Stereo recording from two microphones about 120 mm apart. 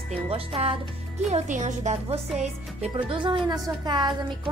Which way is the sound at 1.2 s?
90° right.